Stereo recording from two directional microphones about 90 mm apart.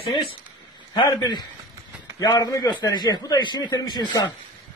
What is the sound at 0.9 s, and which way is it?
Speech, 50° left (ahead or behind).